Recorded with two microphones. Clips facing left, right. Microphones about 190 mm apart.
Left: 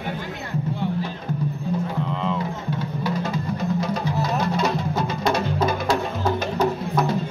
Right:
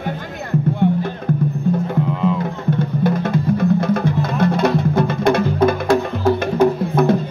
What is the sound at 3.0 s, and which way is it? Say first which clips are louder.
Music: right 8 dB; 55° right (ahead or behind).